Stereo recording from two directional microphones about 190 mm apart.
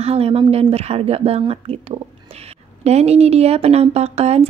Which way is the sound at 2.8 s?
35° right (ahead or behind).